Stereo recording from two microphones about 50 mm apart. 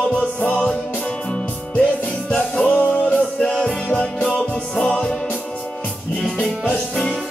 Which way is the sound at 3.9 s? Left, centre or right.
Left.